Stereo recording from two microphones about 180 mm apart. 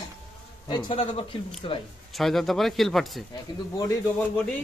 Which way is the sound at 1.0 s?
35° left (ahead or behind).